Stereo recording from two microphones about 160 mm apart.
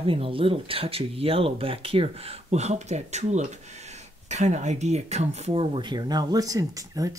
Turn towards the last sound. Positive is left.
turn(degrees=-20)  # may be behind; listen again after turning